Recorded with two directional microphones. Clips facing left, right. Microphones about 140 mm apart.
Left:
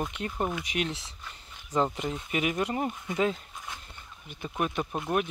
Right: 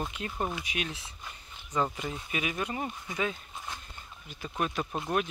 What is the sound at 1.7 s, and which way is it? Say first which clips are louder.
Speech: left 3 dB; 25° left (ahead or behind).